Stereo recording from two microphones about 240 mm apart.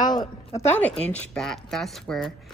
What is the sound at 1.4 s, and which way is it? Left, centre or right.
Speech, centre.